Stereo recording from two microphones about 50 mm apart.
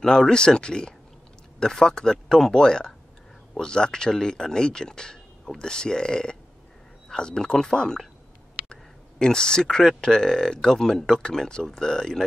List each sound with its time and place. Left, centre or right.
0.0 s speech: centre
9.2 s speech: centre